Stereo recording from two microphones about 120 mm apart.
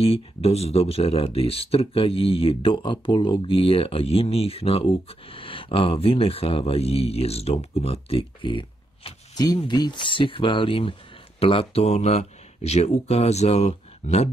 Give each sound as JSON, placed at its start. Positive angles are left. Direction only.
{"t": 0.0, "sound": "speech", "side_deg": 55}